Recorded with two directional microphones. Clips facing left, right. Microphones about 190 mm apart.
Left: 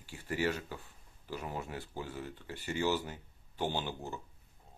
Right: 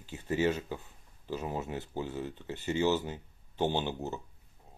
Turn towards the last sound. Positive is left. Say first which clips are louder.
# right 5 dB
turn(degrees=-20)  # may be behind; listen again after turning